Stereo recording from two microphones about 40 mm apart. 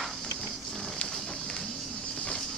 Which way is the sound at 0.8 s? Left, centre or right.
Left.